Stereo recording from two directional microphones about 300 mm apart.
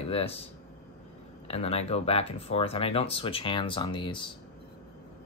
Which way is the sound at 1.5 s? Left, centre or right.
Centre.